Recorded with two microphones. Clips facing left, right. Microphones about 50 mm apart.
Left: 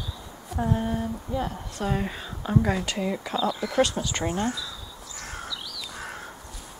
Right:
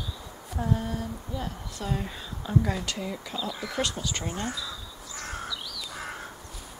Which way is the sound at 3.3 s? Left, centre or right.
Centre.